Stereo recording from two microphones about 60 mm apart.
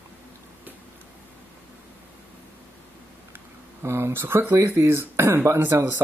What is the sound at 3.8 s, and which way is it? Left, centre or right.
Speech, right.